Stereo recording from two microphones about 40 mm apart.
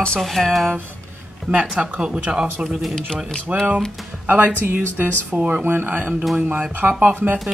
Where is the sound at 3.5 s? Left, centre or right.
Right.